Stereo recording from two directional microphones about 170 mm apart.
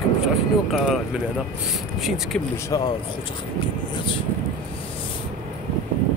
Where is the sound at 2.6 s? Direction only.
20° left (ahead or behind).